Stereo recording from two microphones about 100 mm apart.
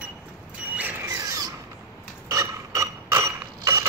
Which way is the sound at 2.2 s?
30° right (ahead or behind).